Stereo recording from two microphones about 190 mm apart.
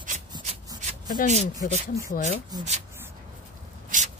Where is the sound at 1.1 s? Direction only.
40° left (ahead or behind).